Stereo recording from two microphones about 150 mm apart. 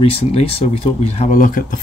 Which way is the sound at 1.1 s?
50° left (ahead or behind).